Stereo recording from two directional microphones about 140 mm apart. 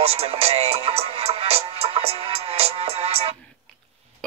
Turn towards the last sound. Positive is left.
turn(degrees=-45)  # may be behind; listen again after turning